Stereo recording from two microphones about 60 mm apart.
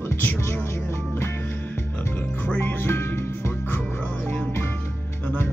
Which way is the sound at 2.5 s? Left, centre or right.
Left.